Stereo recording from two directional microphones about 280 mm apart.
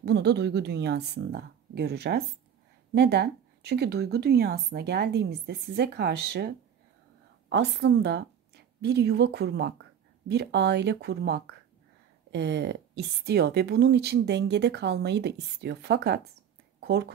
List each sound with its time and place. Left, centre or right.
0.0 s a woman's voice: right